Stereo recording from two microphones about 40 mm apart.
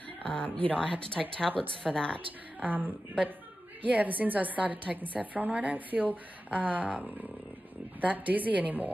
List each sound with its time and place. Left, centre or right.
0.2 s speech: left
1.0 s speech: centre
1.8 s speech: centre
2.6 s a woman's voice: right